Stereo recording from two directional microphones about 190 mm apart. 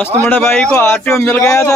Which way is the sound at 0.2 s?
10° left (ahead or behind).